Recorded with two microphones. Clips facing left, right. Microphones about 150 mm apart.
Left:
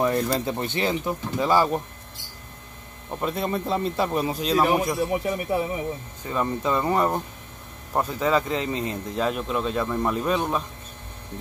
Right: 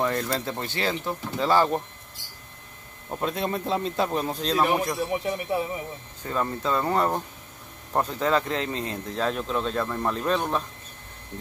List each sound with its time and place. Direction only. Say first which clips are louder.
0.0 s speech: left 3 dB; 15° left (ahead or behind)
3.1 s speech: left 1 dB; centre (ahead or behind)
6.2 s speech: left 2 dB; 10° left (ahead or behind)